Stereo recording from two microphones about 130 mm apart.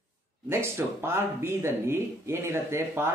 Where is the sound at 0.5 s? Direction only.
20° right (ahead or behind).